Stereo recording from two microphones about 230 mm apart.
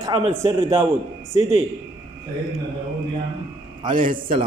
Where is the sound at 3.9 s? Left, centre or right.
Right.